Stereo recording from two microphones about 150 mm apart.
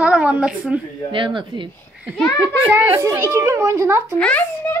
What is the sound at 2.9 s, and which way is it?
A woman's voice, 20° right (ahead or behind).